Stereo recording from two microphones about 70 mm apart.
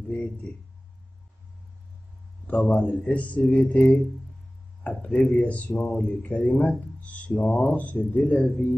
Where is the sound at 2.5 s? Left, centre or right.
Left.